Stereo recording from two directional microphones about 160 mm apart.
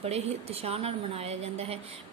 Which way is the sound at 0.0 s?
40° right (ahead or behind).